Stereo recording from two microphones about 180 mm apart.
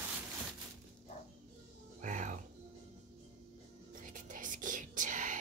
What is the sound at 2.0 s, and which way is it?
Music, 45° right (ahead or behind).